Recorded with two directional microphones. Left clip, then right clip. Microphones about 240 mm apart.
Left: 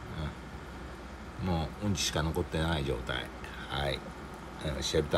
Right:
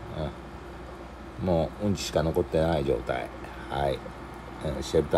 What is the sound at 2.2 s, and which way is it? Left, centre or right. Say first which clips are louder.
Speech: right 8 dB; left.